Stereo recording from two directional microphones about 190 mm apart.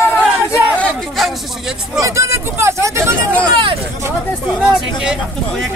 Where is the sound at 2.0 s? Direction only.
15° right (ahead or behind).